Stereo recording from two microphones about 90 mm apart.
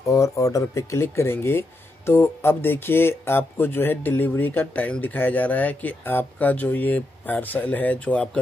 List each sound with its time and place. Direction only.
0.0 s speech: 35° left (ahead or behind); by 8.3 s 15° left (ahead or behind)